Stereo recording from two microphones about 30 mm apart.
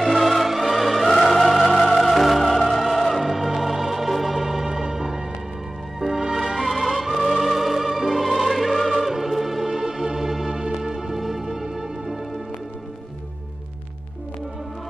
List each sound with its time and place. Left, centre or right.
0.0 s music: centre
9.1 s music: centre